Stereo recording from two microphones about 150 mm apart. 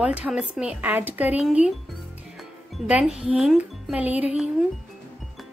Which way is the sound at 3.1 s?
5° right (ahead or behind).